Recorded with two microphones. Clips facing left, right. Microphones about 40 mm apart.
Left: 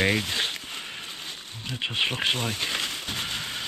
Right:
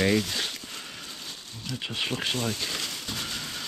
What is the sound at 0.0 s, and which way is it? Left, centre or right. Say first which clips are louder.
Speech: even; left.